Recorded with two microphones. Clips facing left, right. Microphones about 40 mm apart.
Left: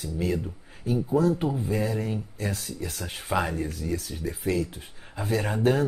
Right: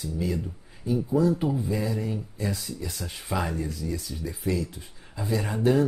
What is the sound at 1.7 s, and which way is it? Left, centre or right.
Speech, left.